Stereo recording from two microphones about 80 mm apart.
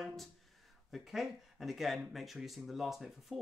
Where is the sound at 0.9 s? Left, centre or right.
Centre.